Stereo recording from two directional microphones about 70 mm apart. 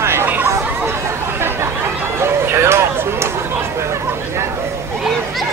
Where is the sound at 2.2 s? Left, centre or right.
Right.